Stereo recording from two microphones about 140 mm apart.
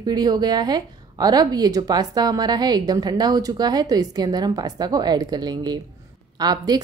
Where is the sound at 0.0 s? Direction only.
30° right (ahead or behind).